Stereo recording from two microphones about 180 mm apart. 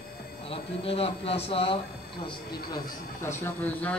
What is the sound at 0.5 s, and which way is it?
Speech, 35° left (ahead or behind).